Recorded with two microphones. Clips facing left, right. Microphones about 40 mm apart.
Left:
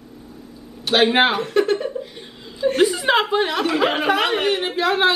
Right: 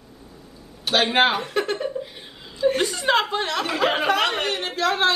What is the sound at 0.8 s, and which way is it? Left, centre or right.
A woman's voice, centre.